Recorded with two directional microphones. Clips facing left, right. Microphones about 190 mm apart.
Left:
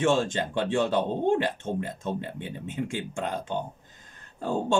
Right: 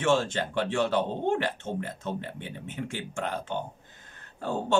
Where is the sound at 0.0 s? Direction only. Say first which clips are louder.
Left 1 dB; 15° left (ahead or behind).